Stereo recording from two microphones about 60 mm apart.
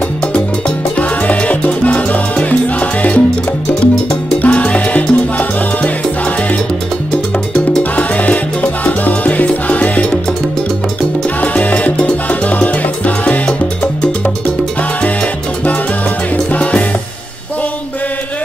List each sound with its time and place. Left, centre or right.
0.3 s salsa music: left
7.5 s salsa music: left
8.8 s music: left
11.4 s music: left